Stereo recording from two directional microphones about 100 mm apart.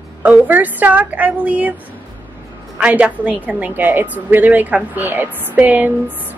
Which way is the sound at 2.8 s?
15° right (ahead or behind).